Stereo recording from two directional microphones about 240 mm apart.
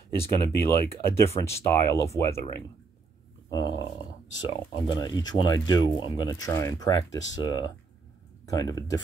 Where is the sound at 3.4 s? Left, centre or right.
Centre.